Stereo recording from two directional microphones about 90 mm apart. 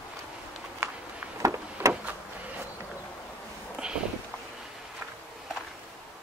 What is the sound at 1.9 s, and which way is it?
Vehicle, 15° right (ahead or behind).